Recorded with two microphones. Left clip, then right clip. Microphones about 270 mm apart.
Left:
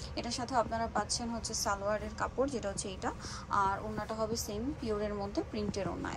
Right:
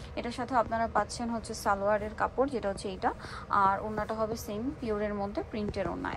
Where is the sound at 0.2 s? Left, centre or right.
Centre.